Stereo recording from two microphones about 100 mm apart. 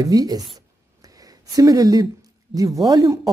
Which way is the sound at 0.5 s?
35° right (ahead or behind).